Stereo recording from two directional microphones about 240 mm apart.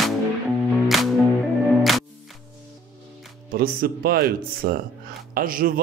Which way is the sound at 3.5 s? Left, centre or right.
Right.